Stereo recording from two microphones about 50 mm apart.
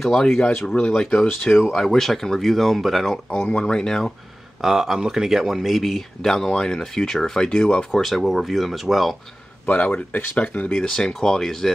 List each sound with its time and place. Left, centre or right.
0.0 s speech: centre
1.4 s speech: centre
3.3 s speech: centre
4.6 s speech: centre
7.9 s speech: centre
9.7 s speech: left
10.7 s speech: centre